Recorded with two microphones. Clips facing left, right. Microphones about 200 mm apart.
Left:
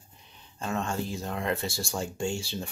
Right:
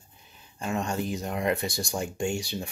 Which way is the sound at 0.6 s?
15° right (ahead or behind).